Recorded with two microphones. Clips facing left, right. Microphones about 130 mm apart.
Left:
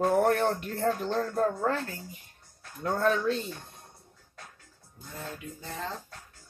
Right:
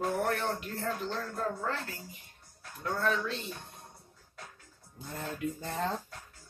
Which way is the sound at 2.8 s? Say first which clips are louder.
Left 5 dB; 45° left (ahead or behind).